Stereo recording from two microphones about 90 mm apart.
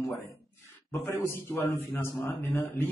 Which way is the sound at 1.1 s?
30° left (ahead or behind).